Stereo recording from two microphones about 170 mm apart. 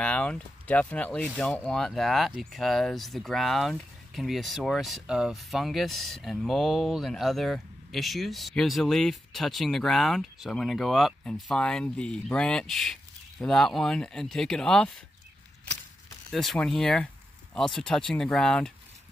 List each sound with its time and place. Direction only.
0.0 s speech: 10° left (ahead or behind)
16.3 s speech: 5° left (ahead or behind)